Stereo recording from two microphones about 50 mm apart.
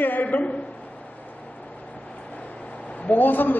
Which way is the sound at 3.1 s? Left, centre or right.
Left.